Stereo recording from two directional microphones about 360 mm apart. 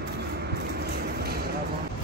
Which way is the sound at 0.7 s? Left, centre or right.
Right.